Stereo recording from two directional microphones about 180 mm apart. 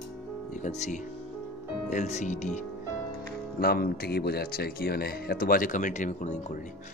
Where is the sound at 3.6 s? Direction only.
60° left (ahead or behind); by 6.6 s 45° left (ahead or behind).